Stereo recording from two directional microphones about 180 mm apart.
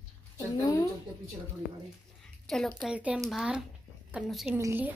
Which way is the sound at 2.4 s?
Centre (ahead or behind).